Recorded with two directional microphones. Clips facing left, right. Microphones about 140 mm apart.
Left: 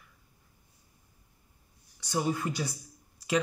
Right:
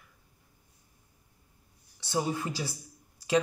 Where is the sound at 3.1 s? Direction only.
30° right (ahead or behind).